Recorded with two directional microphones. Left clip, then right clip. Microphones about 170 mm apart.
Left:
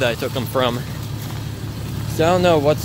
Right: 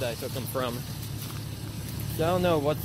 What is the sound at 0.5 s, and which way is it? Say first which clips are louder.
Speech: left 12 dB; 20° left (ahead or behind).